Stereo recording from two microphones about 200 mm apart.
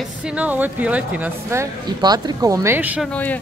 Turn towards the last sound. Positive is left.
turn(degrees=10)  # may be behind; listen again after turning